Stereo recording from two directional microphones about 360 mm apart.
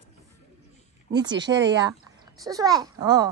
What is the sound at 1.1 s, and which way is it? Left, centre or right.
Speech, centre.